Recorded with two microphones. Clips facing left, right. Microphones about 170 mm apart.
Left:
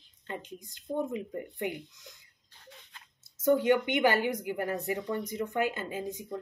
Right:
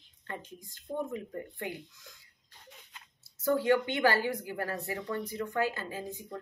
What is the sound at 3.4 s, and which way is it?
A woman's voice, 20° left (ahead or behind).